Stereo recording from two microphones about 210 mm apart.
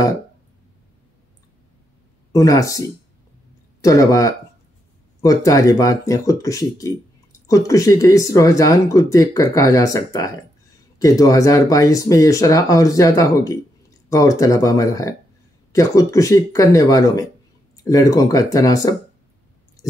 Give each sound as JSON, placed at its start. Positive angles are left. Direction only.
{"t": 2.3, "sound": "speech", "side_deg": 15}
{"t": 3.8, "sound": "speech", "side_deg": 15}